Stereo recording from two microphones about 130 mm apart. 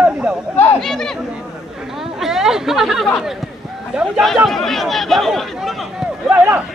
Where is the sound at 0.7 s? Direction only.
5° left (ahead or behind).